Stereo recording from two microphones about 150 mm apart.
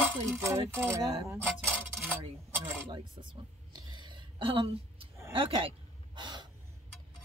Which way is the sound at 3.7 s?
30° right (ahead or behind).